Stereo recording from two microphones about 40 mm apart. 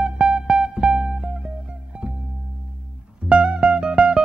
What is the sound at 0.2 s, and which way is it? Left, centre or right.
Music, right.